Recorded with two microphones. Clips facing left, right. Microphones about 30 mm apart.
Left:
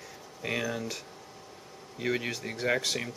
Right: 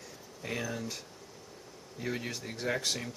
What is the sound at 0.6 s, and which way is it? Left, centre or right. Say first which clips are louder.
Speech: left 4 dB; centre.